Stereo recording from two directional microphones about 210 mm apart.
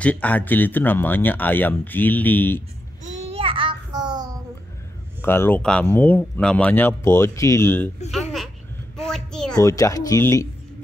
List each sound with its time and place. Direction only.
0.0 s speech: 5° left (ahead or behind)
3.0 s child singing: 35° right (ahead or behind)
5.2 s speech: 10° left (ahead or behind)
8.1 s a sound: centre (ahead or behind)
9.6 s speech: 15° left (ahead or behind)